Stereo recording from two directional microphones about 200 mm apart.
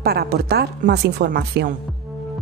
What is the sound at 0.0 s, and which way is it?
A woman's voice, 50° right (ahead or behind).